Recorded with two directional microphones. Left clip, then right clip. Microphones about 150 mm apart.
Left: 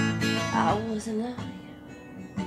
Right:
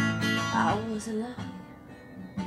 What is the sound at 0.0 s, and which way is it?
Music, 40° left (ahead or behind).